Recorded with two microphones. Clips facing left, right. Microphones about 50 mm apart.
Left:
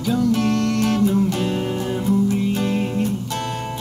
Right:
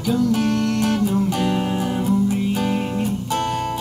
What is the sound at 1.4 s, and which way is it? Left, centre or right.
Music, centre.